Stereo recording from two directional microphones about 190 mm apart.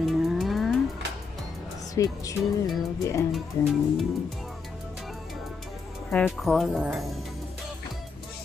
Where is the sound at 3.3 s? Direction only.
Centre (ahead or behind).